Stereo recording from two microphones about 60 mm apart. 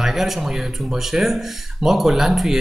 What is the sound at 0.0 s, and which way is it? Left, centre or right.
Speech, centre.